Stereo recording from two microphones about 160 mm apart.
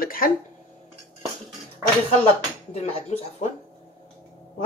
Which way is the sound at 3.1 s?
45° left (ahead or behind).